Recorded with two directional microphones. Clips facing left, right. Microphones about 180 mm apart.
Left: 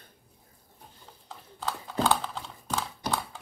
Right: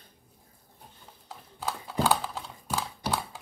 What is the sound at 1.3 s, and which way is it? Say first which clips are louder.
Typing: even; 10° right (ahead or behind).